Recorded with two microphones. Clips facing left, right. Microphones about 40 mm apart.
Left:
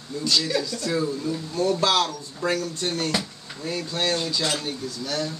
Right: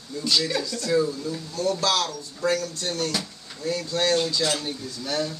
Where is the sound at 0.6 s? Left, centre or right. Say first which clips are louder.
Right 2 dB; centre.